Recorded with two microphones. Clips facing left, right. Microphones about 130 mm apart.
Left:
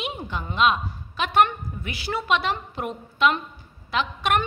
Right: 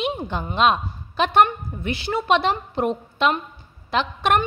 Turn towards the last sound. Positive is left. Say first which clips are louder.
# right 3 dB
turn(degrees=-35)  # may be behind; listen again after turning